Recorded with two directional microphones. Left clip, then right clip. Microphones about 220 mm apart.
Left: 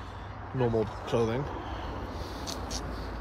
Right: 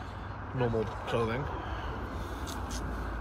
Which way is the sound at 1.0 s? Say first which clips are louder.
Left 2 dB; 25° left (ahead or behind).